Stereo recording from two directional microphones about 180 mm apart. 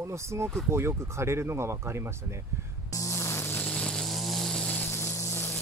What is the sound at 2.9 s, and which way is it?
Music, 15° left (ahead or behind).